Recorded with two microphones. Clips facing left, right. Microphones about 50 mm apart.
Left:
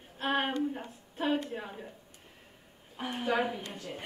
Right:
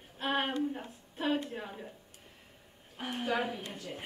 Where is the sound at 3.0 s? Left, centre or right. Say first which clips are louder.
Left 3 dB; centre.